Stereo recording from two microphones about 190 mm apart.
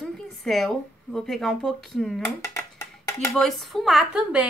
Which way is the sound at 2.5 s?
15° left (ahead or behind).